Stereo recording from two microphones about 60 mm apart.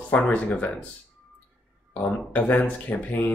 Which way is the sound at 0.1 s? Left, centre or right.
Left.